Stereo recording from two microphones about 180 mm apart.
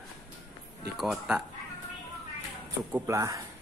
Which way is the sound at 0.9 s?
5° right (ahead or behind).